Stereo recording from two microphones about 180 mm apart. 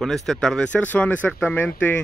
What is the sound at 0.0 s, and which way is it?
Speech, centre (ahead or behind).